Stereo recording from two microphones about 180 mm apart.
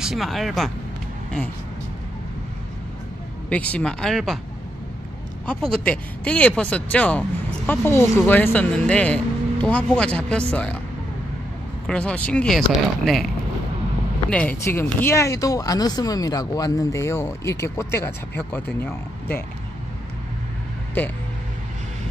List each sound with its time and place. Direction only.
0.0 s speech: centre (ahead or behind)
3.4 s speech: 10° left (ahead or behind)
5.5 s speech: 5° left (ahead or behind)
11.9 s speech: 5° left (ahead or behind)
14.6 s speech: 10° left (ahead or behind)